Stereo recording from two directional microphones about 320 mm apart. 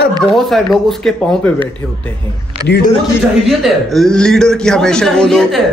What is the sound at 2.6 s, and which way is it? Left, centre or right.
Speech, left.